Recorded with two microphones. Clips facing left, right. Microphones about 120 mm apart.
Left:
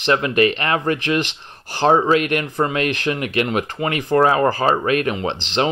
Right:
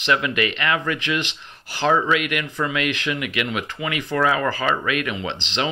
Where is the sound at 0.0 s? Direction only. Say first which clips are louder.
Left 5 dB; 40° left (ahead or behind).